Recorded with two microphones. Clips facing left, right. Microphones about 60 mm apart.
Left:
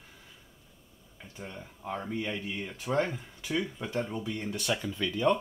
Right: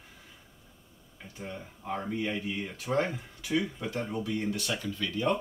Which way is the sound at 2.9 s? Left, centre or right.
Centre.